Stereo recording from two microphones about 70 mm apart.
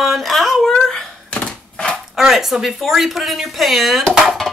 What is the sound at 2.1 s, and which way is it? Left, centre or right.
Speech, centre.